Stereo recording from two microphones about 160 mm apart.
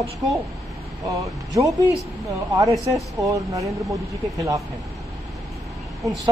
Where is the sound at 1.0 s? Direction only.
20° right (ahead or behind).